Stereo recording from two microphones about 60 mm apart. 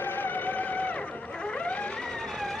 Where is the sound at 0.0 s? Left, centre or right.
Left.